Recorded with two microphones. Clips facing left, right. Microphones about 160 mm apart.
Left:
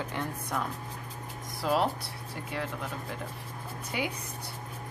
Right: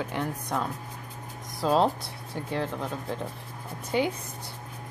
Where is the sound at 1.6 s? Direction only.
30° right (ahead or behind).